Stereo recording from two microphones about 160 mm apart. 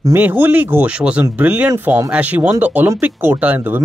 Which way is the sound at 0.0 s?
10° right (ahead or behind).